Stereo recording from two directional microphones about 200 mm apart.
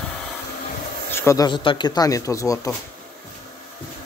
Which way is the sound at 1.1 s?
15° left (ahead or behind).